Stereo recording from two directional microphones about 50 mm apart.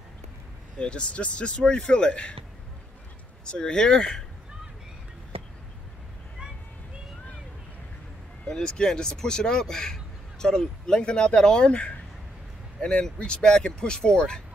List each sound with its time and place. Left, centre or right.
0.7 s speech: centre
3.4 s speech: centre
8.5 s speech: centre